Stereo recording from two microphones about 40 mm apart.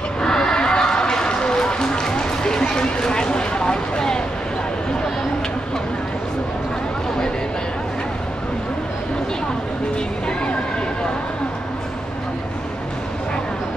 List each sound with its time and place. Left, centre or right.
0.2 s run: centre